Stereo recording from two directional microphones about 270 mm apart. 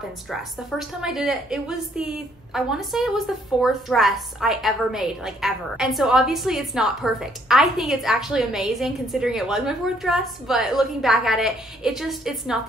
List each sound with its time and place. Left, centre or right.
0.3 s a woman's voice: centre